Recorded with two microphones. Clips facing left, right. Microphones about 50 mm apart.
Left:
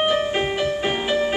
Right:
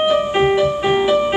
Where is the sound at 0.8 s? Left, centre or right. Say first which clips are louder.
Right 6 dB; centre.